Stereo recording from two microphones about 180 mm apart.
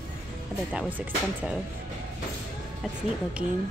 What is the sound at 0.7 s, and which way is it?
Speech, 10° right (ahead or behind).